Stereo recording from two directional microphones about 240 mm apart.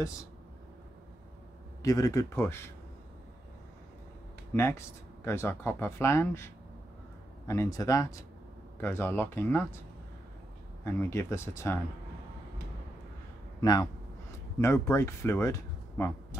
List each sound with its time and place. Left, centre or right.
1.8 s speech: centre
4.6 s speech: centre
10.8 s speech: centre
13.6 s speech: centre